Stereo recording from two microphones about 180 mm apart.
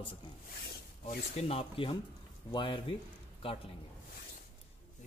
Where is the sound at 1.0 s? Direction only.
35° left (ahead or behind).